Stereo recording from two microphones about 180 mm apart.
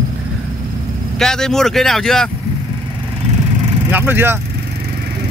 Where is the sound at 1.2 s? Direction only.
5° left (ahead or behind).